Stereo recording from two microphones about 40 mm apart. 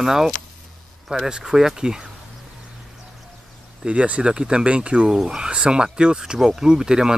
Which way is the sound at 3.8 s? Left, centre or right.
Right.